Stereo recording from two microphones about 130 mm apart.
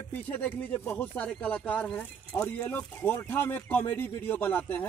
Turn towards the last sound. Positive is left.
turn(degrees=15)  # may be behind; listen again after turning